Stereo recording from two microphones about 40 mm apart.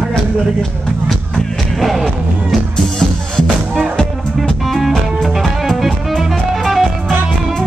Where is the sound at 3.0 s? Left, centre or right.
Centre.